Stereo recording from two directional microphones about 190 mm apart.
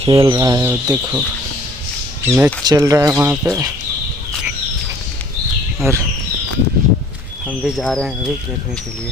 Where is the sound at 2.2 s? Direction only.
10° right (ahead or behind).